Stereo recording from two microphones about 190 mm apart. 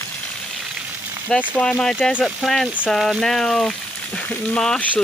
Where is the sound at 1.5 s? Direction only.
5° left (ahead or behind).